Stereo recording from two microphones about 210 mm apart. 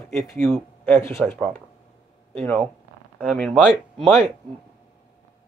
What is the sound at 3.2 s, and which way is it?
Speech, 5° left (ahead or behind).